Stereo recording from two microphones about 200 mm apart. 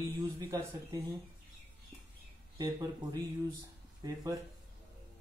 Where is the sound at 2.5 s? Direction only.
20° right (ahead or behind).